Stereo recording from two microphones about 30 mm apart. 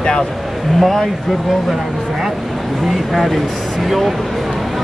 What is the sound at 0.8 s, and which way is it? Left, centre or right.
Speech, centre.